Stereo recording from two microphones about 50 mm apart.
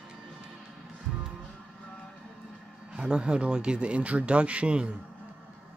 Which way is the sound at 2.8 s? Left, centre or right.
Centre.